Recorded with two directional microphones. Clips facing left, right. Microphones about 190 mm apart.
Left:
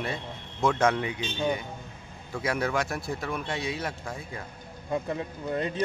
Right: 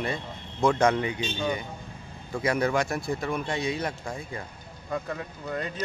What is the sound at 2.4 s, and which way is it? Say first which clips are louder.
Speech: right 3 dB; centre (ahead or behind).